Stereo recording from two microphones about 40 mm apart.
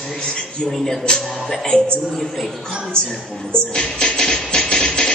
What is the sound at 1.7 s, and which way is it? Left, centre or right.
Speech, left.